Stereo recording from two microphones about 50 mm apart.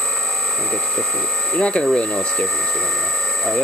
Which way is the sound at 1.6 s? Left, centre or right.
Centre.